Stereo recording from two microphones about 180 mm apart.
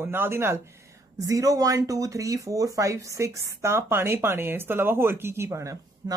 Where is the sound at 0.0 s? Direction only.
10° right (ahead or behind).